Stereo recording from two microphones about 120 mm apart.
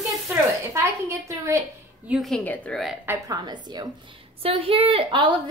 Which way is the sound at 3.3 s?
35° right (ahead or behind).